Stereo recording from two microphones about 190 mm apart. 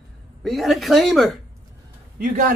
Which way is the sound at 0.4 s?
Centre (ahead or behind).